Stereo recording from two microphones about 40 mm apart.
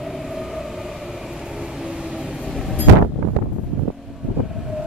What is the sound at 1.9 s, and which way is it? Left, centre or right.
Vehicle, right.